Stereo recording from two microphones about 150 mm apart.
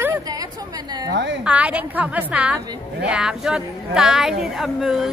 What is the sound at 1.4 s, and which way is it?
A woman's voice, 10° right (ahead or behind).